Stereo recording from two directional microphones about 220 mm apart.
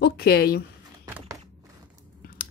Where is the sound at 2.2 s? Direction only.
40° left (ahead or behind).